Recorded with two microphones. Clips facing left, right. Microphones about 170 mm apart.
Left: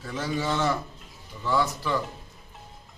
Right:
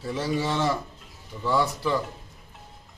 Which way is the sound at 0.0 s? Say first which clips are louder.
Right 2 dB; 30° right (ahead or behind).